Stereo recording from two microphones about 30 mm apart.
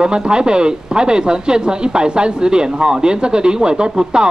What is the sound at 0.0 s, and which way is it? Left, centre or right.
Speech, right.